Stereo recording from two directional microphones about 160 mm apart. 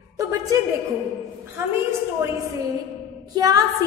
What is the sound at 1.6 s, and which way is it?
Speech, 15° right (ahead or behind).